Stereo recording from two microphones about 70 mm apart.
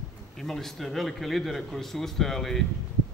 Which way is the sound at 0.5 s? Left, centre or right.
Centre.